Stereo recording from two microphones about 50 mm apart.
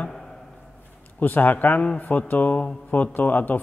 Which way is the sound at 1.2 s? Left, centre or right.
Left.